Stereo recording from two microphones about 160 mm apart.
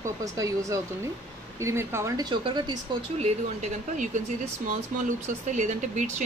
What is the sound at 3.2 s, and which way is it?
Speech, 45° right (ahead or behind).